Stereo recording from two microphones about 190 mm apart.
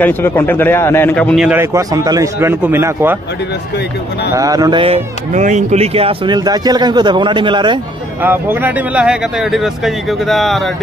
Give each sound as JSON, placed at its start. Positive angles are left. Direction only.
{"t": 0.0, "sound": "speech", "side_deg": 10}
{"t": 1.6, "sound": "speech", "side_deg": -15}
{"t": 4.3, "sound": "speech", "side_deg": -15}
{"t": 8.2, "sound": "speech", "side_deg": -10}